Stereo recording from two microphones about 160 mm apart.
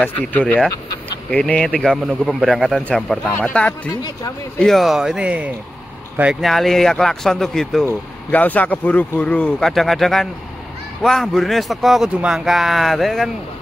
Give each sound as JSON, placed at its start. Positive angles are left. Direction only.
{"t": 0.0, "sound": "a man's voice", "side_deg": 10}
{"t": 3.9, "sound": "speech", "side_deg": 20}
{"t": 4.6, "sound": "a man's voice", "side_deg": 0}